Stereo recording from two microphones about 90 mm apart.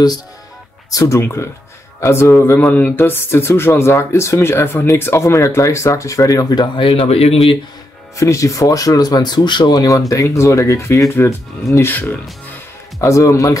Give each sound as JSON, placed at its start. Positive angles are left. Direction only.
{"t": 0.8, "sound": "speech", "side_deg": 35}
{"t": 6.8, "sound": "speech", "side_deg": 90}
{"t": 8.2, "sound": "speech", "side_deg": 35}
{"t": 13.0, "sound": "speech", "side_deg": 35}